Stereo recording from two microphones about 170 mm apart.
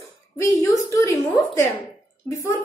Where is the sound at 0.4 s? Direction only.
15° left (ahead or behind).